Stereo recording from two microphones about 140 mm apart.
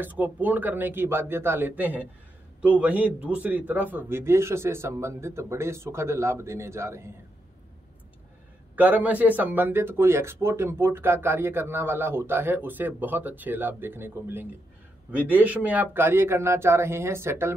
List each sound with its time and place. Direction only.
0.0 s a man's voice: 10° right (ahead or behind)
8.7 s speech: 10° right (ahead or behind)